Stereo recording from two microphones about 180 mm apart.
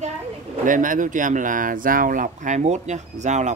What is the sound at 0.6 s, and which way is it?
Speech, 45° right (ahead or behind).